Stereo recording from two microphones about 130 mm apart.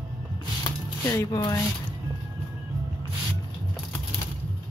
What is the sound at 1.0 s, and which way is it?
Speech, 25° left (ahead or behind).